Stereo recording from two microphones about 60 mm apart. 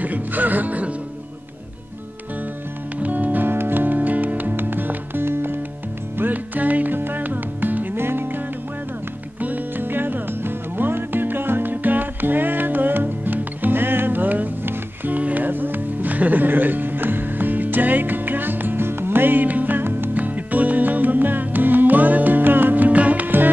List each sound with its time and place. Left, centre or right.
0.0 s music: right
3.0 s music: right
9.4 s music: right